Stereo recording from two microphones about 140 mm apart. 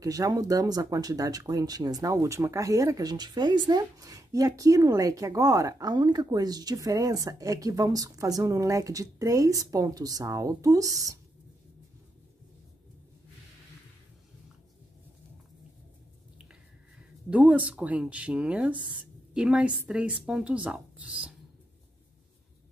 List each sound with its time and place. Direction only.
0.0 s speech: 25° right (ahead or behind)
17.3 s speech: 10° right (ahead or behind)